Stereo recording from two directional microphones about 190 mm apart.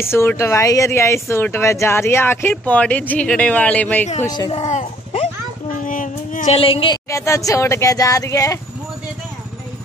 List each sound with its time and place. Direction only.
0.0 s speech: 15° left (ahead or behind)
4.2 s speech: 20° left (ahead or behind)
4.6 s a sound: 35° left (ahead or behind)
5.9 s child singing: 45° left (ahead or behind); by 7.0 s 25° left (ahead or behind)
7.1 s speech: 15° left (ahead or behind)